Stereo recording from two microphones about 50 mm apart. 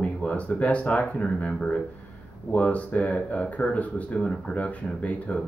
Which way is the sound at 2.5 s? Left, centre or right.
Left.